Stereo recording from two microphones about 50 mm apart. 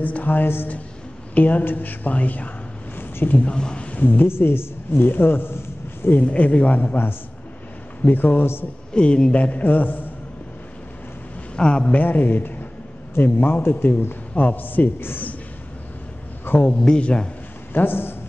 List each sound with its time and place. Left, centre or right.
0.0 s a woman's voice: left
3.0 s a sound: left
3.4 s speech: centre
4.0 s a woman's voice: left
6.2 s a man's voice: left
8.0 s a woman's voice: left
8.9 s a man's voice: centre; by 10.0 s left
11.5 s a man's voice: centre
12.0 s a woman's voice: left
16.6 s a man's voice: centre
17.7 s a woman's voice: left